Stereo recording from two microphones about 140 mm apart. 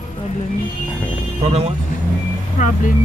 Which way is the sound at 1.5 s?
45° right (ahead or behind).